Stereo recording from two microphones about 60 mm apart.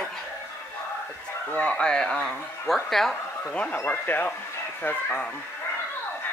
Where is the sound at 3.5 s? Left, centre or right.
Left.